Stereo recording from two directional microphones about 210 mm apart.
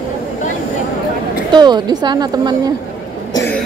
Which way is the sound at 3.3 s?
10° left (ahead or behind).